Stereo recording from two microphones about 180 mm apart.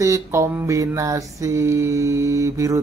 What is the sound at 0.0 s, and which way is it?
Mantra, 15° right (ahead or behind).